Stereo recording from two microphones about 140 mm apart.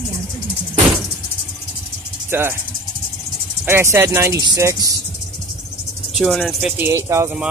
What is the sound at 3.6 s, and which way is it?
Speech, 20° right (ahead or behind).